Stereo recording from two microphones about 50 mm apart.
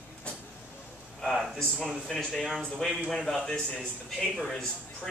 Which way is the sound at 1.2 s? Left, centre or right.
Centre.